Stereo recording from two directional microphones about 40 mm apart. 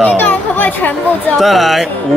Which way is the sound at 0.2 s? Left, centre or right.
Left.